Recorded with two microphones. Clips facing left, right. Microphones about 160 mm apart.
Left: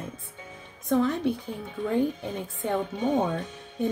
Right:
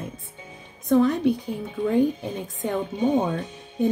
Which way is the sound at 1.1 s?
15° right (ahead or behind).